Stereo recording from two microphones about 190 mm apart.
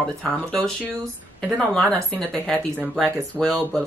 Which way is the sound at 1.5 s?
5° left (ahead or behind).